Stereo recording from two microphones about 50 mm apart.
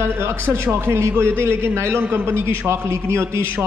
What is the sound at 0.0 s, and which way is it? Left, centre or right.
A man's voice, right.